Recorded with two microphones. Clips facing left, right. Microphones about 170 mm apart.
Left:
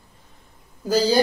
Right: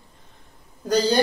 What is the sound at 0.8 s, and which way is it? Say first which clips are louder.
Speech: left 1 dB; 5° left (ahead or behind).